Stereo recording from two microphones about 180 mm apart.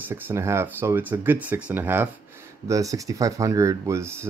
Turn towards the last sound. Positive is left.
turn(degrees=-15)  # may be behind; listen again after turning